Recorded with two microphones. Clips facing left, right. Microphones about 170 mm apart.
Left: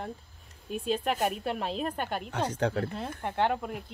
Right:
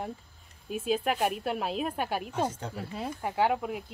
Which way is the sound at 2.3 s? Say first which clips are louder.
Left 2 dB; 75° left (ahead or behind).